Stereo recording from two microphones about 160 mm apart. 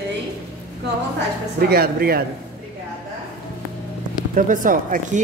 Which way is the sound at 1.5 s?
70° right (ahead or behind).